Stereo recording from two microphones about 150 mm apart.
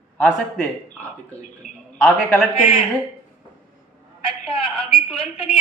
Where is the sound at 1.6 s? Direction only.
55° left (ahead or behind).